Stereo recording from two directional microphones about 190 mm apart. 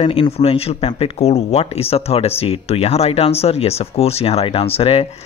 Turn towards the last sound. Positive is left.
turn(degrees=30)  # may be behind; listen again after turning